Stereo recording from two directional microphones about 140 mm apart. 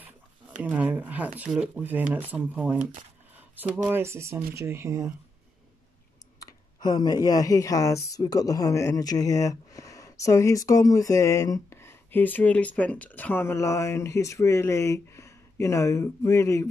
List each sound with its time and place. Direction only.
0.6 s speech: 10° right (ahead or behind)
3.3 s a sound: 10° right (ahead or behind)
3.9 s speech: 20° right (ahead or behind)
6.4 s speech: 30° left (ahead or behind)